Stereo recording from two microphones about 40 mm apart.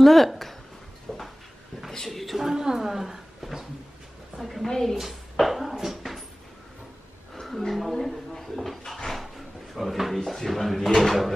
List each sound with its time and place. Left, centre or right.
0.0 s speech: centre
1.1 s a sound: centre
2.0 s a woman's voice: centre
2.5 s a woman's voice: centre
4.9 s speech: centre
7.4 s a woman's voice: centre
8.1 s a sound: centre
9.8 s speech: centre